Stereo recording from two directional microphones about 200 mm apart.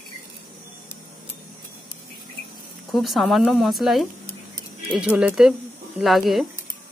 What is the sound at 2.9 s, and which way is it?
Speech, centre (ahead or behind).